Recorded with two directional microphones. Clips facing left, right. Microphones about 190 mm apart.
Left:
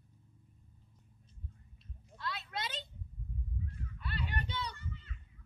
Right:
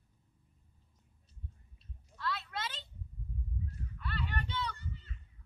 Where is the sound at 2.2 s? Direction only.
20° left (ahead or behind).